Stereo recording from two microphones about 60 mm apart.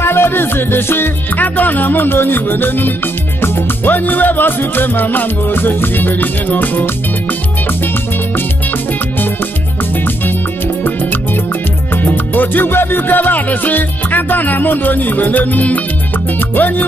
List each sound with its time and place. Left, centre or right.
0.0 s music: left
10.8 s music: left